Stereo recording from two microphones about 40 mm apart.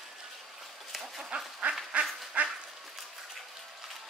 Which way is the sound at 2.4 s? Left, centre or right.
Right.